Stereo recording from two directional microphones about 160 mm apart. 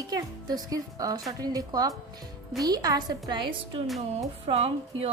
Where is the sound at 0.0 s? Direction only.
25° right (ahead or behind).